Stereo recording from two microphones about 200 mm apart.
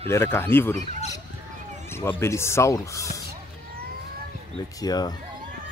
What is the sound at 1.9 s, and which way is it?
Speech, 15° left (ahead or behind).